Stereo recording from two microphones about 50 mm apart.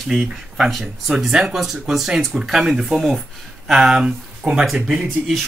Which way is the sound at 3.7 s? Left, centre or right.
Centre.